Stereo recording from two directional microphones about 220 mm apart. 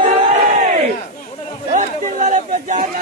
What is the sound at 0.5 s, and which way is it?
Battle cry, 35° right (ahead or behind).